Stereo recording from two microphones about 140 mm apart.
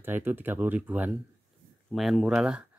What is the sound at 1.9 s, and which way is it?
Speech, centre (ahead or behind).